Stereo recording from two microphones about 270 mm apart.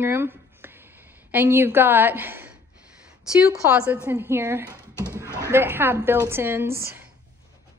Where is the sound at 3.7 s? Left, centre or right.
Centre.